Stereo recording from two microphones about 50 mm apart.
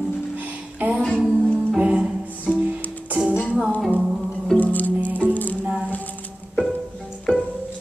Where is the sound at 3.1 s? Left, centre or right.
Right.